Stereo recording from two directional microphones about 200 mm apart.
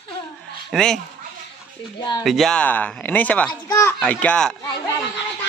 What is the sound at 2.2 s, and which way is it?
Speech, centre (ahead or behind).